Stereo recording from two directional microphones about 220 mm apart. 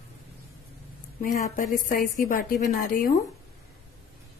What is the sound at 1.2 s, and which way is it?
A woman's voice, 35° left (ahead or behind).